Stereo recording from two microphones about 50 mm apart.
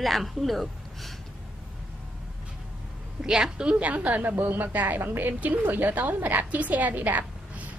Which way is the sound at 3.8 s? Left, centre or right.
Right.